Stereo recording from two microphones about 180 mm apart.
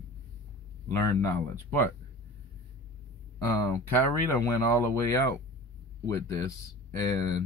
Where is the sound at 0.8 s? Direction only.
15° left (ahead or behind).